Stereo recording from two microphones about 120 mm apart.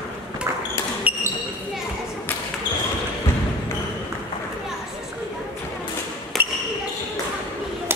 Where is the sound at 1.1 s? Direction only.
10° right (ahead or behind).